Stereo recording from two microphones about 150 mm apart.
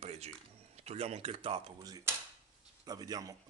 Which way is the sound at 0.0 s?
45° right (ahead or behind).